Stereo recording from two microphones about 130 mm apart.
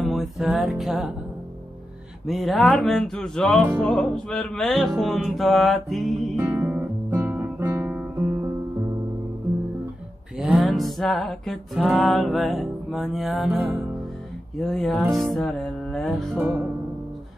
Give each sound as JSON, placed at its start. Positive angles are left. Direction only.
{"t": 0.0, "sound": "music", "side_deg": 0}
{"t": 2.2, "sound": "music", "side_deg": 0}
{"t": 6.6, "sound": "guitar", "side_deg": -15}
{"t": 10.3, "sound": "music", "side_deg": 0}